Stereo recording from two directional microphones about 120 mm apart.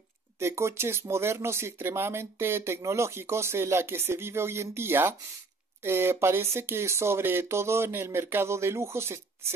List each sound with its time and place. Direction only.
0.4 s speech: 20° right (ahead or behind)